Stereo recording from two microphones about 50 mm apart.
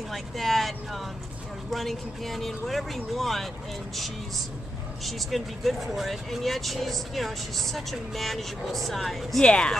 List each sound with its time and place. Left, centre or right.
0.1 s speech: centre
5.0 s speech: centre
9.4 s speech: centre